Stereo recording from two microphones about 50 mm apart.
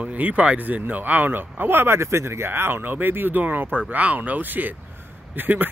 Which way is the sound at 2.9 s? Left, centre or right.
Right.